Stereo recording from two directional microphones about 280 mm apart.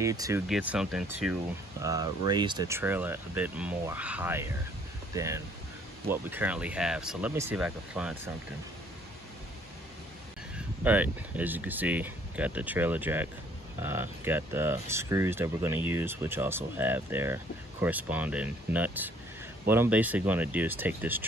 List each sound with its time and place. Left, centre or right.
0.0 s speech: centre
10.8 s speech: centre